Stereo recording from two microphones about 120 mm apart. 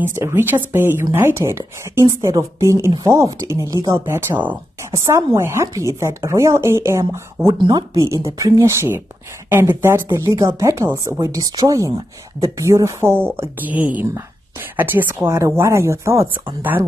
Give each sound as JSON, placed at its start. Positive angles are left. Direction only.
{"t": 0.0, "sound": "speech", "side_deg": -20}
{"t": 7.5, "sound": "speech", "side_deg": -40}
{"t": 7.9, "sound": "speech", "side_deg": -25}